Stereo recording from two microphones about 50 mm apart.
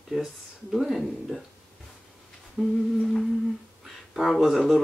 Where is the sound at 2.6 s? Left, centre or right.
Centre.